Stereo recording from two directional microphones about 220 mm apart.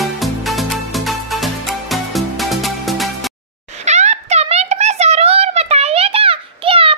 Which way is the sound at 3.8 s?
30° right (ahead or behind).